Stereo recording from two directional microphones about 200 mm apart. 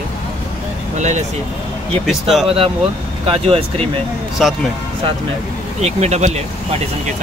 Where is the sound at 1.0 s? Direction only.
35° right (ahead or behind).